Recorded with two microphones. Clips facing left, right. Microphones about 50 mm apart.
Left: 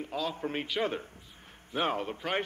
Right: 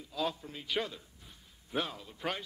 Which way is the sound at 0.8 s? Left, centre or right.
Left.